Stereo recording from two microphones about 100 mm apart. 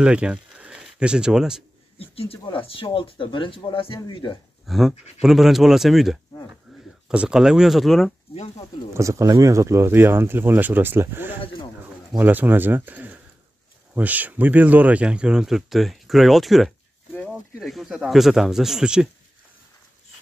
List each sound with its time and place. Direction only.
0.0 s speech: 10° right (ahead or behind)
2.0 s speech: 75° left (ahead or behind)
2.4 s speech: 60° left (ahead or behind)
4.6 s speech: centre (ahead or behind)
8.9 s speech: 30° right (ahead or behind); by 19.0 s 5° right (ahead or behind)